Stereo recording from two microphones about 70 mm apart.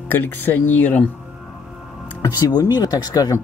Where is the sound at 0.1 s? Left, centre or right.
Left.